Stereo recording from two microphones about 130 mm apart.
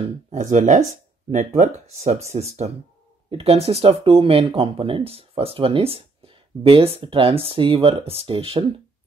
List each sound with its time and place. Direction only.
0.3 s speech: 65° right (ahead or behind); by 8.6 s 45° right (ahead or behind)